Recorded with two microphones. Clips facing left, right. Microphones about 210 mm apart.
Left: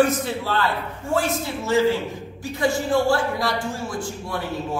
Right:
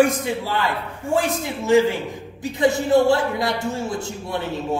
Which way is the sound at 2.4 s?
20° right (ahead or behind).